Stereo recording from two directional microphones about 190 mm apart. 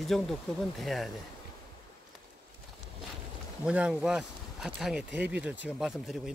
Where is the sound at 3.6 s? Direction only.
5° right (ahead or behind).